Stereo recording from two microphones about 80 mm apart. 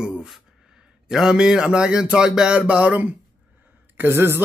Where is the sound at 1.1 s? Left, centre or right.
Centre.